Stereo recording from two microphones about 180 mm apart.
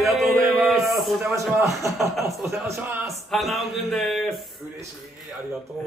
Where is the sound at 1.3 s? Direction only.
15° right (ahead or behind).